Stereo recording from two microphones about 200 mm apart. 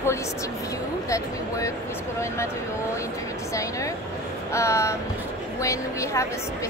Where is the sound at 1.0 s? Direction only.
15° left (ahead or behind).